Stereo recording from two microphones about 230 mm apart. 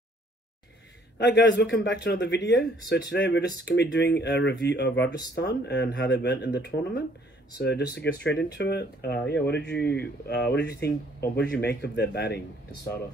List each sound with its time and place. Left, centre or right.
1.1 s speech: left